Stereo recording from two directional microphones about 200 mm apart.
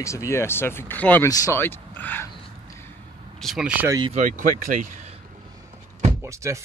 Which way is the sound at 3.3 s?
Centre (ahead or behind).